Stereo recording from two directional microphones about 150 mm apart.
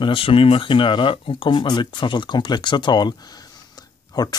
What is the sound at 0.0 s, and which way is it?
Speech, 35° left (ahead or behind).